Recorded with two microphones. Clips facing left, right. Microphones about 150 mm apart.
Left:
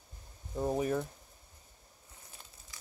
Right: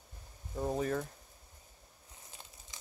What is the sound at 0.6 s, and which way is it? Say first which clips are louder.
Speech: left 2 dB; 10° left (ahead or behind).